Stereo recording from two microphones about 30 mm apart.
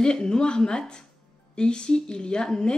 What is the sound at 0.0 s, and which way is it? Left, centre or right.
Speech, left.